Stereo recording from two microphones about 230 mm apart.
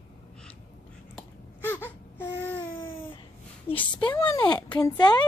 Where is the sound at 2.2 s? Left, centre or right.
Centre.